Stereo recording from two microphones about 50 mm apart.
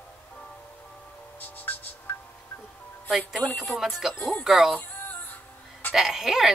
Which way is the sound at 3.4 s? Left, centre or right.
Left.